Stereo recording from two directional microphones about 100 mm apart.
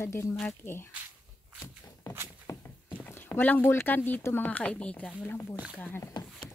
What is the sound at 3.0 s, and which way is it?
Speech, 20° left (ahead or behind).